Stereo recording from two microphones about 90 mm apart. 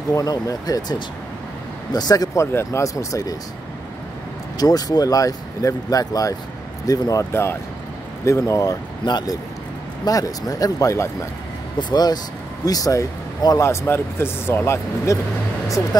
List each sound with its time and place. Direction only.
0.1 s speech: 40° left (ahead or behind)
2.4 s speech: 30° left (ahead or behind)
4.6 s speech: 45° left (ahead or behind)
8.3 s speech: 35° left (ahead or behind)
9.0 s speech: 45° left (ahead or behind)
11.9 s speech: 50° left (ahead or behind)
13.6 s speech: 30° left (ahead or behind)